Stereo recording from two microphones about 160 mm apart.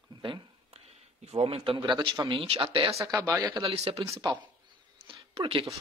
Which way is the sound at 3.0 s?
20° right (ahead or behind).